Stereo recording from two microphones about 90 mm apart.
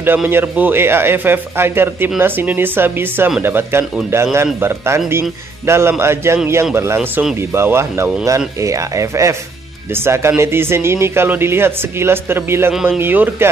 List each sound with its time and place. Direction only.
0.3 s speech: 25° right (ahead or behind)